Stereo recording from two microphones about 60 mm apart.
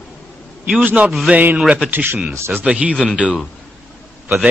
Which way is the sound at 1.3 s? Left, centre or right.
Centre.